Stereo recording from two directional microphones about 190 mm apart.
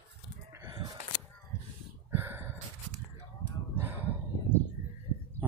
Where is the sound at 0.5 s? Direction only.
20° right (ahead or behind).